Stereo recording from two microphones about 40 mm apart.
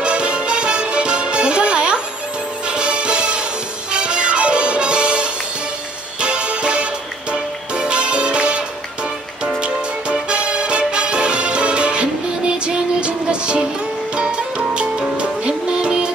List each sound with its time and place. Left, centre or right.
0.0 s music: right